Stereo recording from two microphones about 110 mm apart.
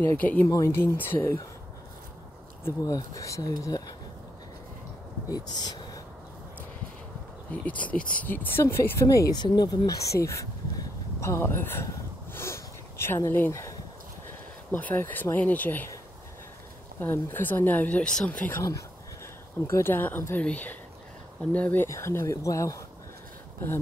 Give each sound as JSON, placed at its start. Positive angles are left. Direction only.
{"t": 0.0, "sound": "speech", "side_deg": 15}
{"t": 2.6, "sound": "speech", "side_deg": 30}
{"t": 5.3, "sound": "speech", "side_deg": 40}
{"t": 7.5, "sound": "speech", "side_deg": 15}
{"t": 14.7, "sound": "speech", "side_deg": 15}
{"t": 17.0, "sound": "speech", "side_deg": 20}
{"t": 18.6, "sound": "speech", "side_deg": 30}
{"t": 21.8, "sound": "speech", "side_deg": 25}